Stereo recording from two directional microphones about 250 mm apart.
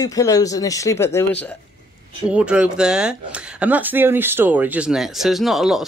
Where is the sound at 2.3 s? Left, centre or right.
Centre.